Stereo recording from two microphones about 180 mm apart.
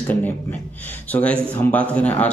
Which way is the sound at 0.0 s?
10° left (ahead or behind).